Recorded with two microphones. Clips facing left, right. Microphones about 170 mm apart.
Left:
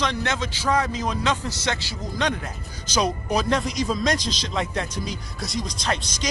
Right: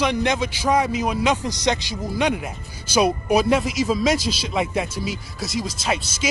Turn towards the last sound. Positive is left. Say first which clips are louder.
# right 2 dB
turn(degrees=-5)  # may be behind; listen again after turning